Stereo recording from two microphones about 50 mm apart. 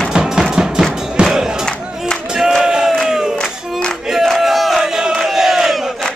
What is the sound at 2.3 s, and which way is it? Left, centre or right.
Battle cry, centre.